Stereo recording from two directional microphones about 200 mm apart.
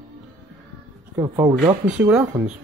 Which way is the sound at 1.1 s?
15° right (ahead or behind).